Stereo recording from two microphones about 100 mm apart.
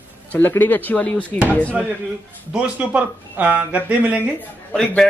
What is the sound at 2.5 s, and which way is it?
Speech, 10° right (ahead or behind).